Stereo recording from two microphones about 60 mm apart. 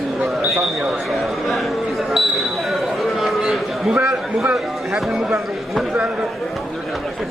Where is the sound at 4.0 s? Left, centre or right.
Right.